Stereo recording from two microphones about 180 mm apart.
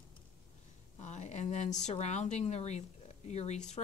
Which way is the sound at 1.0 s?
40° left (ahead or behind).